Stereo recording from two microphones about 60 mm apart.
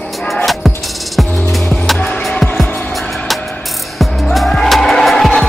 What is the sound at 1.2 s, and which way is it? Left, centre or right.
Music, centre.